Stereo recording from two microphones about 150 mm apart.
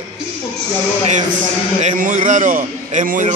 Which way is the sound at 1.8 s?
55° right (ahead or behind).